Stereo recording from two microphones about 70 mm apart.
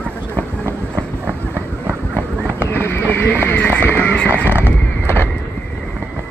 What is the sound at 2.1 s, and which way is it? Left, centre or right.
Horse, left.